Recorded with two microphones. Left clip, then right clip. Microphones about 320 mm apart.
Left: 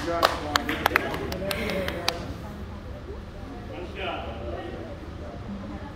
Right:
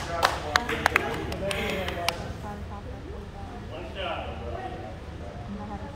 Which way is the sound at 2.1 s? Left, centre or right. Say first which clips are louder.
Left 1 dB; centre.